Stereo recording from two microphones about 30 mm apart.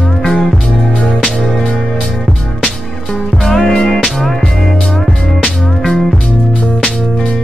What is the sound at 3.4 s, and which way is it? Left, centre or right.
Music, left.